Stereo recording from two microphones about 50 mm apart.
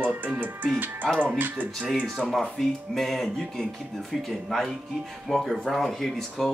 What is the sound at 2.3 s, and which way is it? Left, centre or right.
Speech, centre.